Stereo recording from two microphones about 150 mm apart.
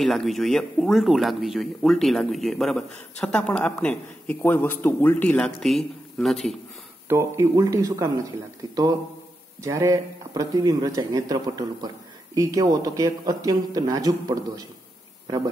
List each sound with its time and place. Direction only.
0.0 s speech: centre (ahead or behind)
7.1 s speech: 20° right (ahead or behind)
9.6 s speech: 20° right (ahead or behind)